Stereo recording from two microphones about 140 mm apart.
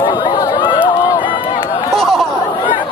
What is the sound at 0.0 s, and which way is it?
Chatter, 30° left (ahead or behind).